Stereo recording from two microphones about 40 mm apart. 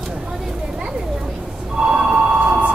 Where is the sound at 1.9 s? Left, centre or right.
Right.